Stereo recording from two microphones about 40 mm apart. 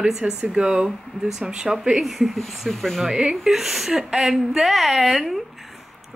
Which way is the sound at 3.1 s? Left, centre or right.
Right.